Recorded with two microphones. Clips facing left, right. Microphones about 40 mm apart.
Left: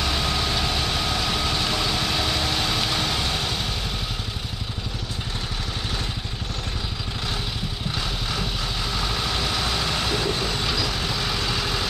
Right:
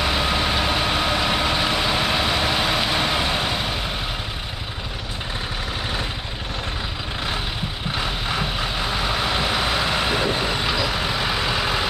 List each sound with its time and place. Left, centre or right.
0.0 s vehicle: right
8.0 s vehicle: right